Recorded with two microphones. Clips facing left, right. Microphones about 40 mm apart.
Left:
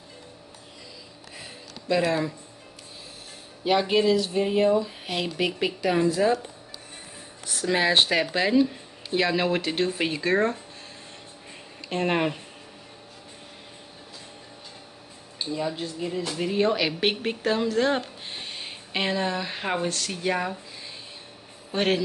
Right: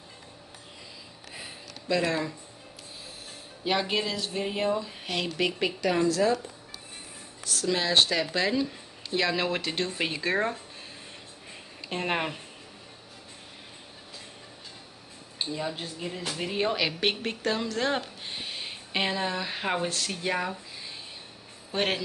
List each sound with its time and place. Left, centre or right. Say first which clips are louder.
1.9 s speech: left 3 dB; centre
3.6 s speech: left 6 dB; centre
6.0 s speech: left 2 dB; left
7.4 s speech: left 4 dB; left; by 10.6 s centre
11.9 s speech: left 5 dB; centre
15.7 s speech: left 5 dB; centre
21.7 s speech: left 4 dB; centre